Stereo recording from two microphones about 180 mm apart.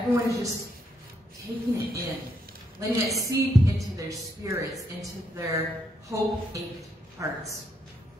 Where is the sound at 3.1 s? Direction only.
20° right (ahead or behind).